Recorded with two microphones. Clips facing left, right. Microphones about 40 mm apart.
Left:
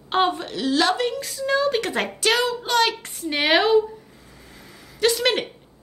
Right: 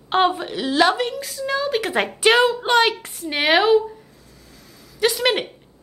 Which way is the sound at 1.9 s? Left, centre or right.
Centre.